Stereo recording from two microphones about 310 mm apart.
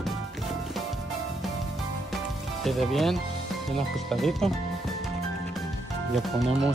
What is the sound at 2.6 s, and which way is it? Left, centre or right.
Speech, centre.